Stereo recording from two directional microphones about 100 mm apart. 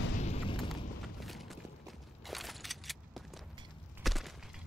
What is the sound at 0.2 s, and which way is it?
Boom, 80° left.